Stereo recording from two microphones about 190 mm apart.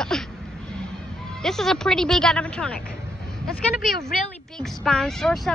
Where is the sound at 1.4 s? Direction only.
Centre (ahead or behind).